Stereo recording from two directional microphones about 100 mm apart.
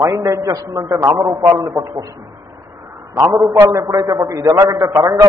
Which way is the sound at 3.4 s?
35° right (ahead or behind).